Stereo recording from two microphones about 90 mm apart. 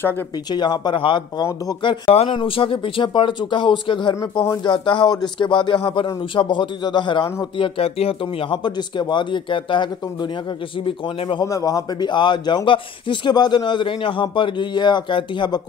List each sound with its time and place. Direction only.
0.5 s speech: 55° left (ahead or behind)
10.9 s speech: 75° left (ahead or behind)
11.4 s a man's voice: 40° left (ahead or behind)
12.1 s speech: 60° left (ahead or behind)